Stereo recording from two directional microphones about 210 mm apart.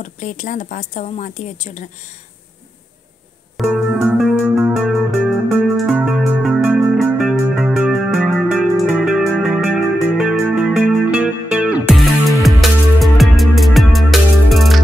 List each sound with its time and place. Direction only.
0.0 s a woman's voice: 35° left (ahead or behind)
3.5 s music: 5° right (ahead or behind)